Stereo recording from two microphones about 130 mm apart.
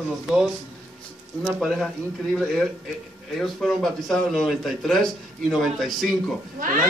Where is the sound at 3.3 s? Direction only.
Centre (ahead or behind).